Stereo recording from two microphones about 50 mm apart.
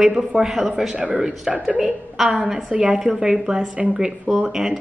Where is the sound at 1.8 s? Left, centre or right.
Centre.